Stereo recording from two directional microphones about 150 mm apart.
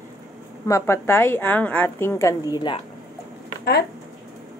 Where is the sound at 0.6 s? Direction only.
20° left (ahead or behind).